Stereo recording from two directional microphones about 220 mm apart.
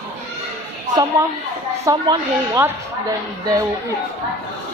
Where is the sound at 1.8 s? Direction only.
15° right (ahead or behind).